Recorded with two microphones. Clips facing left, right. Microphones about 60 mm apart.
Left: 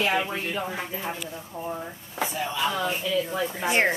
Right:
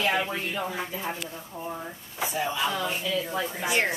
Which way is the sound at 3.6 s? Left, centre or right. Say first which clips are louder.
Left 4 dB; left.